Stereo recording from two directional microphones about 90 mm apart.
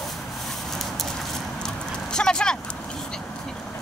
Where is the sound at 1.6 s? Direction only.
10° left (ahead or behind).